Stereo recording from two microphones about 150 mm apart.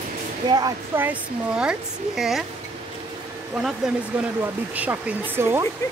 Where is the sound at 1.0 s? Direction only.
10° right (ahead or behind).